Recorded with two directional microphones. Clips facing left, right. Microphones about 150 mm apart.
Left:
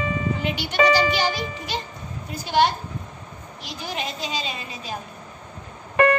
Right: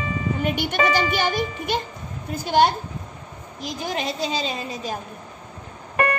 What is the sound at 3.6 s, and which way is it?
A woman's voice, 40° right (ahead or behind).